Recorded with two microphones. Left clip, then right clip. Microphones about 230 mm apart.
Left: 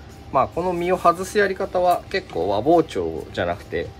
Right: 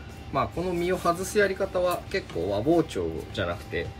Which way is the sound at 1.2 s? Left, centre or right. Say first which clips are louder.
Left 4 dB; centre.